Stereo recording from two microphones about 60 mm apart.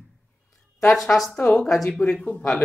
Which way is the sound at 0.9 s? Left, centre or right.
Centre.